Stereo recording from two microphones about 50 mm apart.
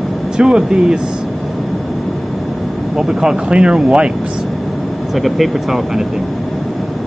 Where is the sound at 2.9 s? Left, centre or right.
Centre.